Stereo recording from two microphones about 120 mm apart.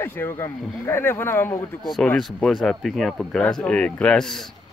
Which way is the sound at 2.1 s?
Centre (ahead or behind).